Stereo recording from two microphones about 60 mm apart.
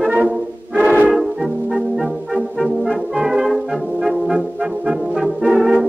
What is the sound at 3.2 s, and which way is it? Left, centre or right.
Brass instrument, centre.